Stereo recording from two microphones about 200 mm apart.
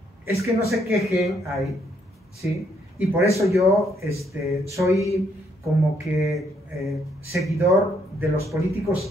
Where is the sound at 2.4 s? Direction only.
15° right (ahead or behind).